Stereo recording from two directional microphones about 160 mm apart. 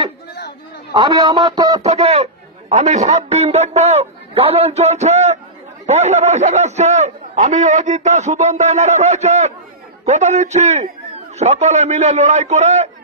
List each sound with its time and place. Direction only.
0.9 s speech: 25° right (ahead or behind)
1.8 s a man's voice: 40° right (ahead or behind)